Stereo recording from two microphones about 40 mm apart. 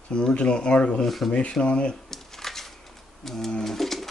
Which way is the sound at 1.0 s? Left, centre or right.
Centre.